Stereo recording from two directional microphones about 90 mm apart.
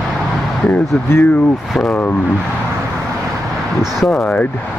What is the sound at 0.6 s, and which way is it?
Speech, 15° left (ahead or behind).